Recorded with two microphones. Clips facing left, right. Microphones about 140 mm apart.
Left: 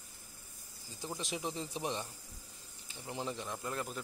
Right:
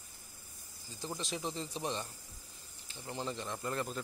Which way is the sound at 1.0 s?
10° left (ahead or behind).